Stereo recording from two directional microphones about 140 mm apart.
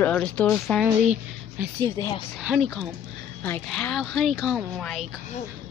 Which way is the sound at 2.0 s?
25° left (ahead or behind).